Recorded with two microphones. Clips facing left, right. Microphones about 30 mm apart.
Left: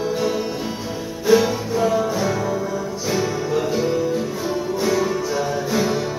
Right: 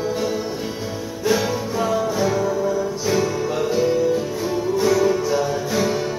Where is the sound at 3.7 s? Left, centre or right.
Centre.